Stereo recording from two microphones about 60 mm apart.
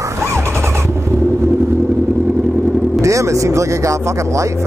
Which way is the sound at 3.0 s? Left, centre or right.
Right.